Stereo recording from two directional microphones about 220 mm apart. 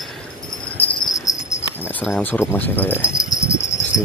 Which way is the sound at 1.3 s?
15° left (ahead or behind).